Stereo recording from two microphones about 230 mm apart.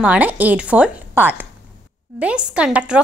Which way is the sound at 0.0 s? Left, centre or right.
Centre.